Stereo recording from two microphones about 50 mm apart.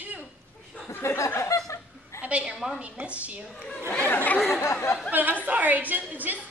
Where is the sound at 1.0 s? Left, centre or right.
Left.